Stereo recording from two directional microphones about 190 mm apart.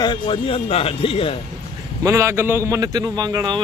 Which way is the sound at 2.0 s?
15° right (ahead or behind).